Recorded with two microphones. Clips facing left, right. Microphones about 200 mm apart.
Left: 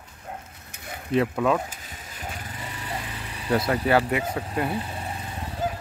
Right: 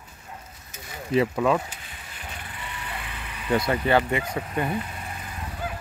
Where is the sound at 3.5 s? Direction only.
Centre (ahead or behind).